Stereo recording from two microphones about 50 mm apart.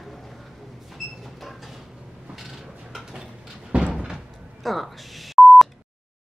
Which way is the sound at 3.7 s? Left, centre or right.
Right.